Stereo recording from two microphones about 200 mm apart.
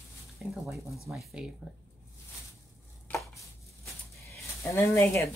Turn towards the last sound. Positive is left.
turn(degrees=15)  # may be behind; listen again after turning